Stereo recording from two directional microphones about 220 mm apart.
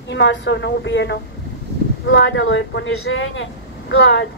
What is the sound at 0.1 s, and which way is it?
A woman's voice, 55° left (ahead or behind).